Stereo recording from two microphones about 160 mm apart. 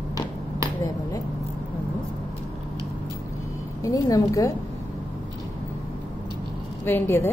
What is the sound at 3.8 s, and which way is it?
Speech, 20° left (ahead or behind).